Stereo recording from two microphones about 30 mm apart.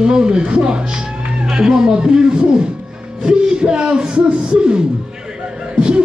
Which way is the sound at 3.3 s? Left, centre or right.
Right.